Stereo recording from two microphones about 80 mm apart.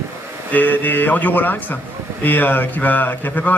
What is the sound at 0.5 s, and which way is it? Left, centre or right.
Speech, left.